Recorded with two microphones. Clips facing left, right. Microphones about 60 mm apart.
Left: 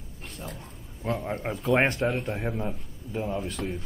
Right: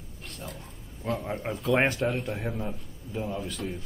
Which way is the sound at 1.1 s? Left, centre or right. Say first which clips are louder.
Left 1 dB; centre.